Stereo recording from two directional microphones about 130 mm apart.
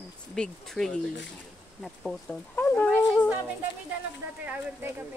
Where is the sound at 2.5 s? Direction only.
10° left (ahead or behind).